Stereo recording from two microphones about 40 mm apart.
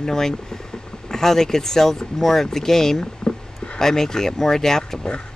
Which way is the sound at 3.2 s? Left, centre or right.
Left.